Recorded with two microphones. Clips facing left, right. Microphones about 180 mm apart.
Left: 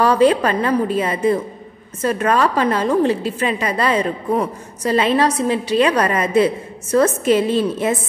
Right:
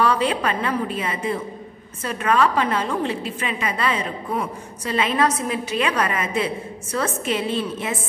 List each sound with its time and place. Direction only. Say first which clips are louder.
0.0 s a woman's voice: left 7 dB; 40° left (ahead or behind)